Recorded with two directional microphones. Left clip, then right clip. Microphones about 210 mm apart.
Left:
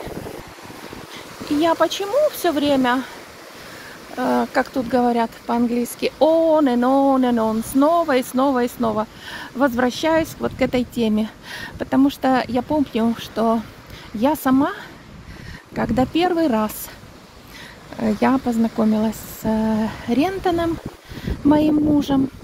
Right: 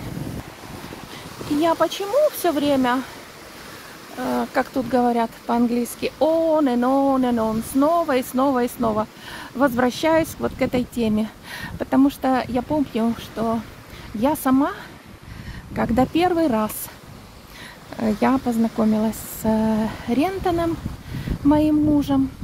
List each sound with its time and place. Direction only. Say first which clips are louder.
1.6 s speech: left 2 dB; 5° left (ahead or behind)
4.2 s speech: left 3 dB; 15° left (ahead or behind)
4.7 s speech: even; 5° left (ahead or behind)
17.9 s speech: left 1 dB; 5° left (ahead or behind)